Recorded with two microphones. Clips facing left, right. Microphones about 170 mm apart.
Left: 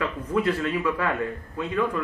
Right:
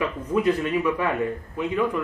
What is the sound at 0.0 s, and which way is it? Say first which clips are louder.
A man's voice: right 2 dB; 15° right (ahead or behind).